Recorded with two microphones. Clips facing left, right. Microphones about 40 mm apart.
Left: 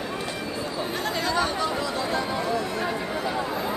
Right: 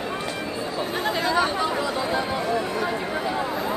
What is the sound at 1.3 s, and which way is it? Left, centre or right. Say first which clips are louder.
Chatter: right 2 dB; right.